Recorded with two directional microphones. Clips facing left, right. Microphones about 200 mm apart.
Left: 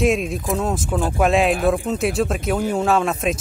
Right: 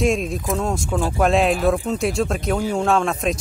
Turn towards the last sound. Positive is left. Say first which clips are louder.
# even
turn(degrees=0)  # may be behind; listen again after turning